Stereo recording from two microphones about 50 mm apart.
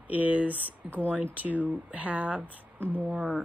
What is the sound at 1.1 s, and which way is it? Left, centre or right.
Speech, right.